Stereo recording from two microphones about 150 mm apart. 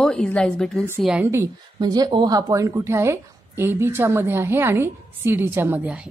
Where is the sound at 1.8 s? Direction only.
25° right (ahead or behind); by 6.0 s 10° right (ahead or behind).